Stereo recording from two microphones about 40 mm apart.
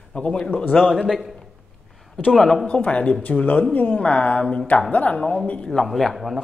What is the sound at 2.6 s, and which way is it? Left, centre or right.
Speech, left.